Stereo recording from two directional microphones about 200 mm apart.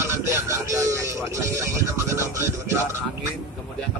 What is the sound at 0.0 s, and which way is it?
Music, 15° right (ahead or behind).